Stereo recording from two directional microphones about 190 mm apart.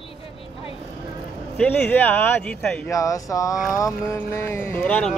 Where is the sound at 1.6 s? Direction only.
5° left (ahead or behind).